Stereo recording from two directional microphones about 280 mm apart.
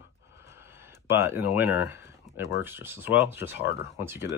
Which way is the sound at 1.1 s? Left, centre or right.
Centre.